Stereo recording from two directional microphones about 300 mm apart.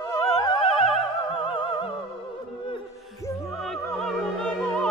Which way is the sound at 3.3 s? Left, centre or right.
Centre.